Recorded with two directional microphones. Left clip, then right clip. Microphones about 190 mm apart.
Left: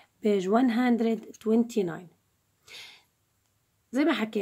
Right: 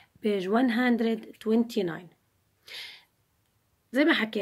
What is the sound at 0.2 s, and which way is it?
Speech, 55° left (ahead or behind).